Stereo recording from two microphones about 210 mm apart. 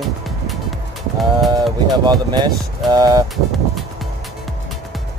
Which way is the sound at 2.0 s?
20° right (ahead or behind).